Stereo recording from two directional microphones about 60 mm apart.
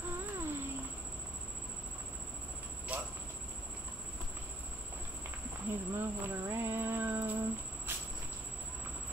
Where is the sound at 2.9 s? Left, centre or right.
Right.